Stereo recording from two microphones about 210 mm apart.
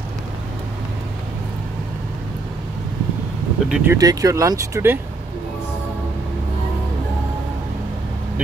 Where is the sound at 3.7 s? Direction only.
15° right (ahead or behind).